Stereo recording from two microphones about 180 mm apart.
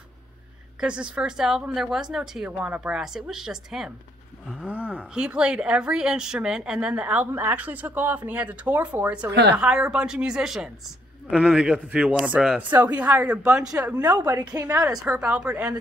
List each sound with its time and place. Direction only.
0.7 s a woman's voice: 5° right (ahead or behind)
9.3 s a woman's voice: 70° right (ahead or behind)
9.6 s a woman's voice: 5° right (ahead or behind)
14.0 s a woman's voice: 20° right (ahead or behind)